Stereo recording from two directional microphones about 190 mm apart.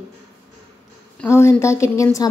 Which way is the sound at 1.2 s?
15° left (ahead or behind).